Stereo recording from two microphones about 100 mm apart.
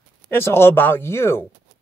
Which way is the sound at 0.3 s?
25° left (ahead or behind).